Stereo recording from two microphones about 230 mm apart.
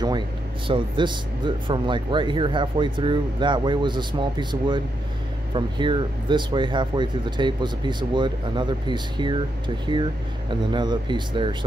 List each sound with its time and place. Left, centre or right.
0.7 s speech: right